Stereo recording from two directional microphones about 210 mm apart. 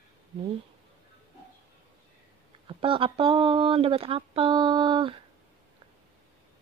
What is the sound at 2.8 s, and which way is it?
Speech, 25° right (ahead or behind).